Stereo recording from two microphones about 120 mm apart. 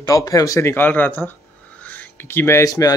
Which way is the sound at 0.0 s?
30° left (ahead or behind).